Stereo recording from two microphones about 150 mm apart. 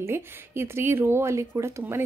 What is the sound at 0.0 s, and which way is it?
Speech, 15° right (ahead or behind).